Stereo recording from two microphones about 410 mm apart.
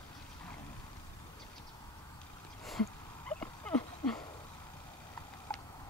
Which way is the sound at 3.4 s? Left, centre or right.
Centre.